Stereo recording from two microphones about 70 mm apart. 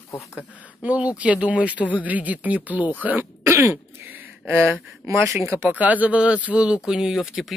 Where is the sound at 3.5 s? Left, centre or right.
Right.